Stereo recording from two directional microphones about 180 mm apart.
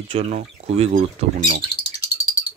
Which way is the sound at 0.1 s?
40° right (ahead or behind).